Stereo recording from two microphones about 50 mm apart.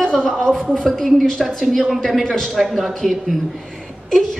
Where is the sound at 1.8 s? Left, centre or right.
Centre.